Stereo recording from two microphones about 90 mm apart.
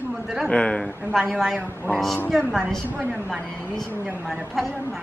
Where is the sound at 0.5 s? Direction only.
10° left (ahead or behind).